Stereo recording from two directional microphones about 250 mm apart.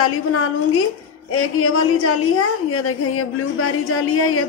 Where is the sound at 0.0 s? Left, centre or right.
Left.